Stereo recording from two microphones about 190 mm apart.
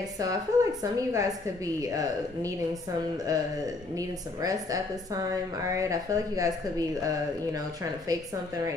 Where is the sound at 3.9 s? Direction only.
20° right (ahead or behind).